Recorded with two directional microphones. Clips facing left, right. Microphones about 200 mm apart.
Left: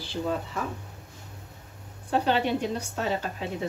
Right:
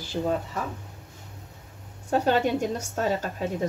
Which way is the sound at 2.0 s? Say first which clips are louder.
Right 2 dB; 45° right (ahead or behind).